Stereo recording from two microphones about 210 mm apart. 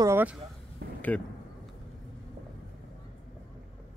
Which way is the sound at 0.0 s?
10° right (ahead or behind).